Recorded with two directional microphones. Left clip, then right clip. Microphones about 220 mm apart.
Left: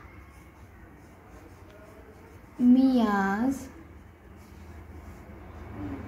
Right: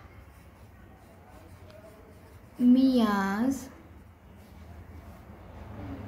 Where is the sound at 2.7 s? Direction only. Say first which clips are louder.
Left 1 dB; 5° right (ahead or behind).